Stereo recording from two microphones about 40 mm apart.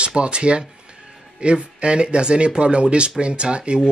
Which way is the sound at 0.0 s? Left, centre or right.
Right.